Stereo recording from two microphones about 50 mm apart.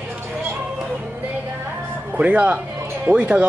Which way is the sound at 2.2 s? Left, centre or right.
Right.